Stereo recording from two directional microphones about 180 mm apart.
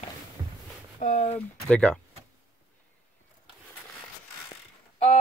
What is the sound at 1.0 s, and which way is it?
Speech, 45° left (ahead or behind).